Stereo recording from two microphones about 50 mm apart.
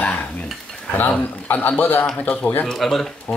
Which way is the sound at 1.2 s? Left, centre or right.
Left.